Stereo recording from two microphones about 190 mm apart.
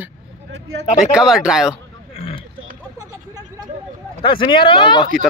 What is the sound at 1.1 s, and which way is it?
Speech, 5° right (ahead or behind).